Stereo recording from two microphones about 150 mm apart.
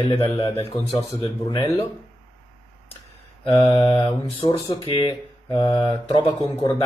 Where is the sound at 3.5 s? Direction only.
30° left (ahead or behind).